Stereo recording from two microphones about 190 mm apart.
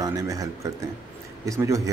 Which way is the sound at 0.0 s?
20° right (ahead or behind).